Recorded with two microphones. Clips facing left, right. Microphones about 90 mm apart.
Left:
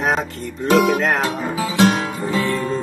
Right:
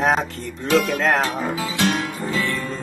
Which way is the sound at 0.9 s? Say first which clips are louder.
Left 2 dB; centre (ahead or behind).